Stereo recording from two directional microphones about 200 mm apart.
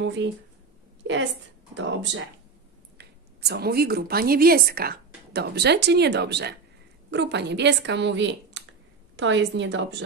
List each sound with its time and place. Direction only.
0.0 s a woman's voice: 65° right (ahead or behind)
3.0 s speech: 55° right (ahead or behind)